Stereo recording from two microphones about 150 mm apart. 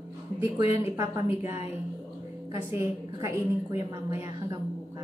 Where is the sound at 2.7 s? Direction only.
20° right (ahead or behind).